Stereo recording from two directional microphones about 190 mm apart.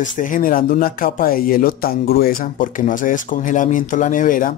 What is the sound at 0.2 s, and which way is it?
Speech, 45° left (ahead or behind).